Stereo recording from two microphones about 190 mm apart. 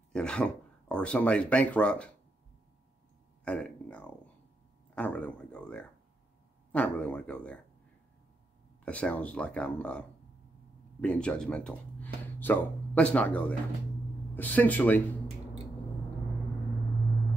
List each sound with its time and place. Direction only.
0.1 s speech: 5° left (ahead or behind)
3.4 s speech: 5° left (ahead or behind)
8.8 s speech: 5° left (ahead or behind)